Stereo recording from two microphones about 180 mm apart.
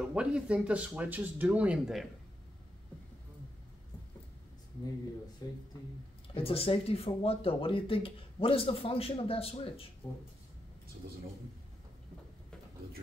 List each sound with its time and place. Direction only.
0.1 s speech: 5° right (ahead or behind)
5.4 s speech: 20° left (ahead or behind)
6.3 s speech: 30° left (ahead or behind)